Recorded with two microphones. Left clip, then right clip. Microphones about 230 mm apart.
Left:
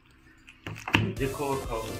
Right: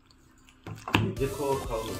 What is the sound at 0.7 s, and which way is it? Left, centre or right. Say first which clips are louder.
Speech: left 1 dB; centre.